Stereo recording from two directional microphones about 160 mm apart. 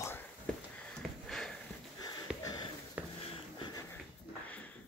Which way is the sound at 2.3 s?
5° right (ahead or behind).